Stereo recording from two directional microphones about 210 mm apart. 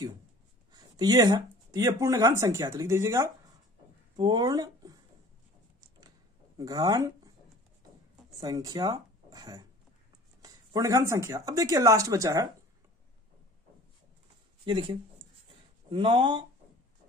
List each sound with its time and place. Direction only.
0.7 s speech: 20° right (ahead or behind)
5.9 s a sound: 20° right (ahead or behind)
8.4 s speech: 20° right (ahead or behind)
14.6 s speech: 25° right (ahead or behind)